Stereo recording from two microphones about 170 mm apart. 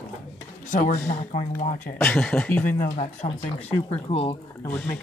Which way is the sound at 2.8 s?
50° left (ahead or behind).